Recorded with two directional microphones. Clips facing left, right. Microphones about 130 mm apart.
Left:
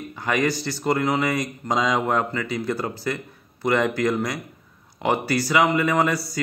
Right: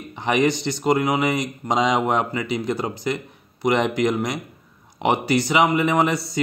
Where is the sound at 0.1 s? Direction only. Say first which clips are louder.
Right 4 dB; 20° right (ahead or behind).